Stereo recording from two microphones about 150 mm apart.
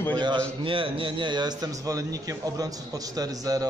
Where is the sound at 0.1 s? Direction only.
30° right (ahead or behind).